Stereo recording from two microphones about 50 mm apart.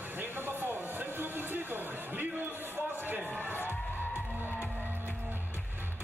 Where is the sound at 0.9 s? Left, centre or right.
Right.